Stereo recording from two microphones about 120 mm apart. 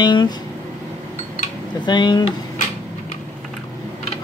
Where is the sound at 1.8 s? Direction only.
40° left (ahead or behind).